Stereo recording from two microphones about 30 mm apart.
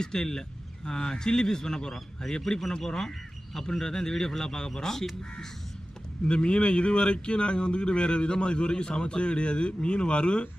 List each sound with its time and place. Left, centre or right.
0.0 s speech: left
6.2 s speech: left